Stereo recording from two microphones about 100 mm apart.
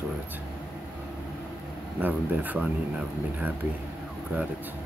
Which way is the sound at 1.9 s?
15° right (ahead or behind).